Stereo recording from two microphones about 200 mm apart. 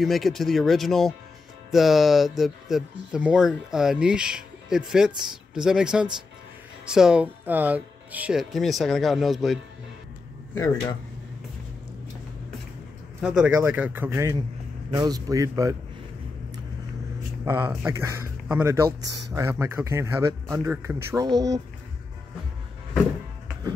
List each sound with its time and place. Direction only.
0.0 s speech: centre (ahead or behind)
10.5 s speech: 15° left (ahead or behind)
13.2 s speech: 5° right (ahead or behind)
17.5 s speech: 10° right (ahead or behind)